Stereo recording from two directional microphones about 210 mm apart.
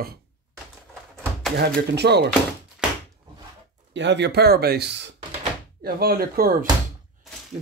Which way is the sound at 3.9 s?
55° right (ahead or behind).